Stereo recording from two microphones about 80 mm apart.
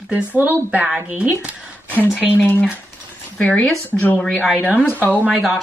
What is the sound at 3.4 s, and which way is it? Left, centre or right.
Speech, centre.